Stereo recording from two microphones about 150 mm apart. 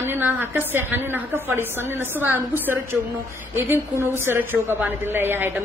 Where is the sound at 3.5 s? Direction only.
15° right (ahead or behind).